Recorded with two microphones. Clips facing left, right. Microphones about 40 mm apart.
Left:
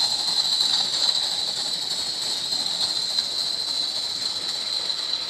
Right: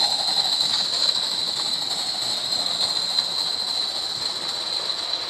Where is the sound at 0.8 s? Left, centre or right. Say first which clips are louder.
Right 1 dB; centre.